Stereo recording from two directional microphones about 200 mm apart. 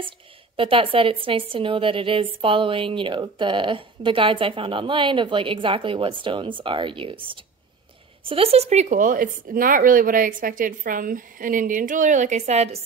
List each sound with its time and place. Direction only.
0.6 s a woman's voice: 25° right (ahead or behind)